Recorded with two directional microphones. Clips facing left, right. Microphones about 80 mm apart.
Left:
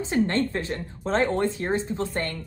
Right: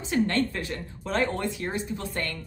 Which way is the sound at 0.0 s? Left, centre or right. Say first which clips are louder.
Left 2 dB; left.